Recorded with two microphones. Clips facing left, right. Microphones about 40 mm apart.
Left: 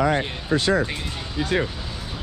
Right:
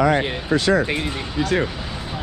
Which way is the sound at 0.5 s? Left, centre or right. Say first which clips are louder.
Right 2 dB; right.